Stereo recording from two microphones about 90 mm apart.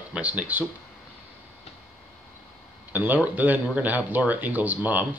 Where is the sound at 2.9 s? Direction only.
20° right (ahead or behind).